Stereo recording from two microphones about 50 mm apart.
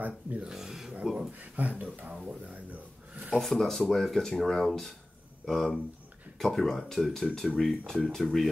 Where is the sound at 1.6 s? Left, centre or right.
Right.